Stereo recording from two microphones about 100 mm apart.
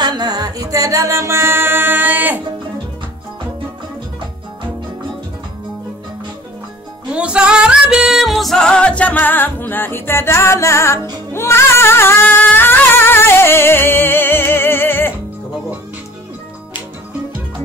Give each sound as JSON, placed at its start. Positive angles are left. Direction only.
{"t": 0.0, "sound": "music", "side_deg": -45}
{"t": 7.1, "sound": "music", "side_deg": -10}
{"t": 11.3, "sound": "singing", "side_deg": 25}